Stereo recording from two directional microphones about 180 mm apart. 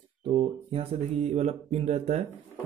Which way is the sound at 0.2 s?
30° right (ahead or behind).